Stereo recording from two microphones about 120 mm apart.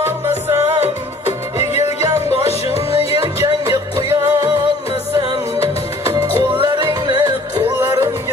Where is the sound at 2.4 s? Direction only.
55° left (ahead or behind).